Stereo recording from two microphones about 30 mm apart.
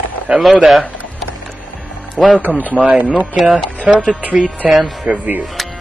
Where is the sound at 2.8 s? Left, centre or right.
Right.